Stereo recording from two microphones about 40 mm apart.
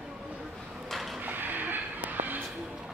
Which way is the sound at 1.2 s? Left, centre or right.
Right.